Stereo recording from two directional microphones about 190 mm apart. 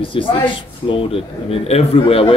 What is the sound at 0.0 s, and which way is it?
A man's voice, 25° left (ahead or behind).